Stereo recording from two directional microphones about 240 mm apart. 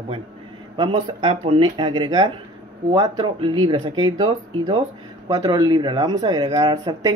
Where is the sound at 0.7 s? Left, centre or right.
Centre.